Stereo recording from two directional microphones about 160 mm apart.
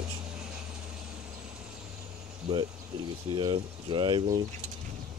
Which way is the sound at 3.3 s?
30° right (ahead or behind).